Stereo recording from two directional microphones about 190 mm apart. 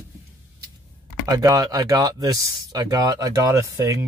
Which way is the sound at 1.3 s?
20° right (ahead or behind).